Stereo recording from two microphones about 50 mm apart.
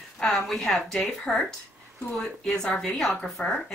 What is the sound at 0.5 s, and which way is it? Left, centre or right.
A woman's voice, centre.